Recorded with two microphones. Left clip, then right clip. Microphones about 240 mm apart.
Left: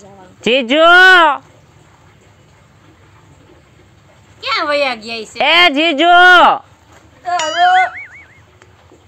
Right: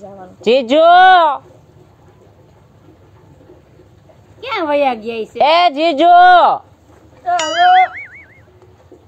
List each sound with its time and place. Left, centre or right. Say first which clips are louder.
0.4 s speech: even; left
4.4 s a woman's voice: even; centre
5.4 s speech: left 1 dB; left
7.3 s a sound: right 1 dB; centre